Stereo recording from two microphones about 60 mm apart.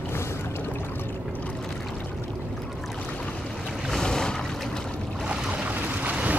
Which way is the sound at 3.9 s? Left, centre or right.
Centre.